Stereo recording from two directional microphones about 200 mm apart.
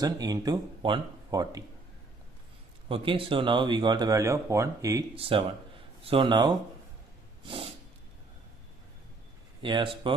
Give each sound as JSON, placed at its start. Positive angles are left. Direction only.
{"t": 0.0, "sound": "speech", "side_deg": -20}
{"t": 2.9, "sound": "speech", "side_deg": -25}
{"t": 5.1, "sound": "speech", "side_deg": -25}
{"t": 7.4, "sound": "snort", "side_deg": -25}
{"t": 9.6, "sound": "speech", "side_deg": -25}